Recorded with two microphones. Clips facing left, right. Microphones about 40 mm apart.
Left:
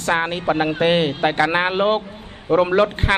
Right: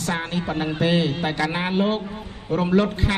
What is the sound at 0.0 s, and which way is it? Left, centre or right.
A man's voice, left.